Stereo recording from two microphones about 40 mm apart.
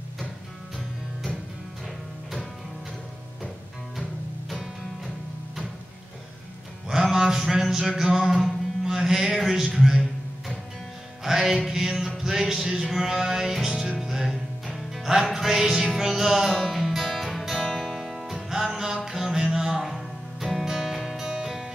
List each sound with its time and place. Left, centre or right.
6.9 s a sound: centre
8.0 s mantra: centre
9.8 s a man's voice: centre
11.2 s music: centre
17.6 s music: centre
17.9 s music: centre